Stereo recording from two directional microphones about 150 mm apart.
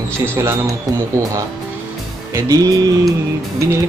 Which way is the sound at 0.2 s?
20° right (ahead or behind).